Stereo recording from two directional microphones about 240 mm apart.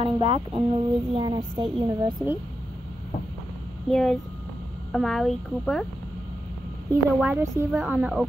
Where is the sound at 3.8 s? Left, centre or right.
Centre.